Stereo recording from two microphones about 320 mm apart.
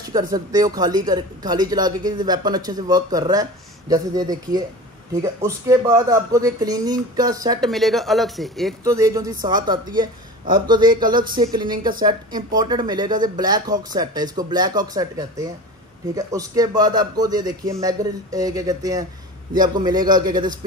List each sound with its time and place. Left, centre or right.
0.1 s speech: centre
7.6 s speech: centre
8.8 s speech: centre
10.8 s speech: right
11.3 s speech: centre